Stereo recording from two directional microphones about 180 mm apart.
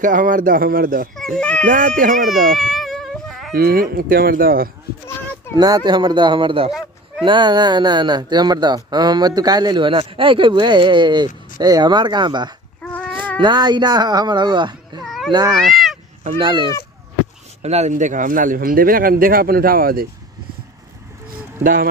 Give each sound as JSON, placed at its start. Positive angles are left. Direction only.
{"t": 0.0, "sound": "speech", "side_deg": -50}
{"t": 1.4, "sound": "speech", "side_deg": 5}
{"t": 1.7, "sound": "speech", "side_deg": -45}
{"t": 2.6, "sound": "cat", "side_deg": 0}
{"t": 3.5, "sound": "speech", "side_deg": -55}
{"t": 5.6, "sound": "speech", "side_deg": -25}
{"t": 12.8, "sound": "a sound", "side_deg": 5}
{"t": 13.4, "sound": "speech", "side_deg": -25}
{"t": 15.0, "sound": "cat", "side_deg": 0}
{"t": 15.5, "sound": "speech", "side_deg": 0}
{"t": 16.3, "sound": "speech", "side_deg": -30}
{"t": 17.6, "sound": "speech", "side_deg": -35}